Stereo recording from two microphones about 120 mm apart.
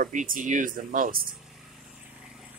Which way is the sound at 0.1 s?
90° right.